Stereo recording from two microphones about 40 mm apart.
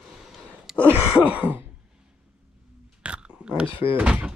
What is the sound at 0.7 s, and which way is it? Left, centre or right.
Throat clearing, centre.